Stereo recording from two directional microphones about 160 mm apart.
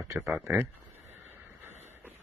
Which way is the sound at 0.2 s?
10° right (ahead or behind).